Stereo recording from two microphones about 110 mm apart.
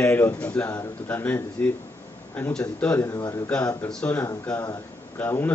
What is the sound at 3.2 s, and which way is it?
Speech, 35° left (ahead or behind).